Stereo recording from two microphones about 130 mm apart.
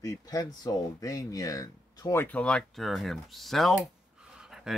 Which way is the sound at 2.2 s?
10° left (ahead or behind).